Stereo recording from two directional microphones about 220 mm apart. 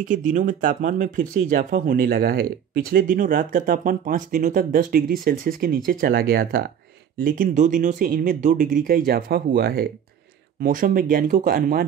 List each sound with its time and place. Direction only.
0.0 s speech: 35° right (ahead or behind)